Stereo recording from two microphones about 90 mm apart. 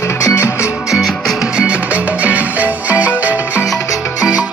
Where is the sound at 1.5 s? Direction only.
10° right (ahead or behind).